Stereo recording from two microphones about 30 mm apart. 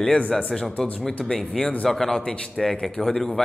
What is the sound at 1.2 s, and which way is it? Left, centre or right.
A man's voice, centre.